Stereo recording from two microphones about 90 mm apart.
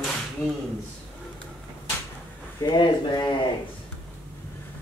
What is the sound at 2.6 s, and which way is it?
Speech, 55° left (ahead or behind).